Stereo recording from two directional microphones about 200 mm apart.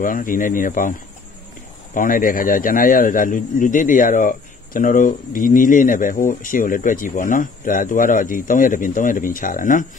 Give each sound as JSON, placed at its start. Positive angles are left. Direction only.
{"t": 0.0, "sound": "speech", "side_deg": 45}
{"t": 2.0, "sound": "speech", "side_deg": 45}